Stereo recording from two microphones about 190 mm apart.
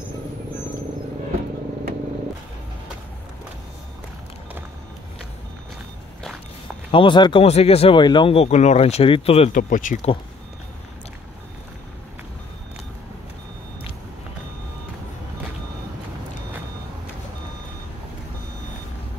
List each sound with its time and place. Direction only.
6.9 s speech: 25° left (ahead or behind); by 10.1 s 45° left (ahead or behind)